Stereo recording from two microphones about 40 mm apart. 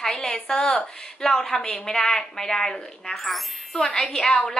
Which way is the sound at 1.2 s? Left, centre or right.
Centre.